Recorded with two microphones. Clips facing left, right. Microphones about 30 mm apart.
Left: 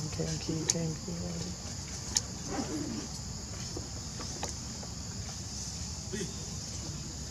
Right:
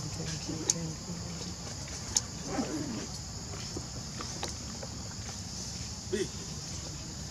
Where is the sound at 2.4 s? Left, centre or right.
Centre.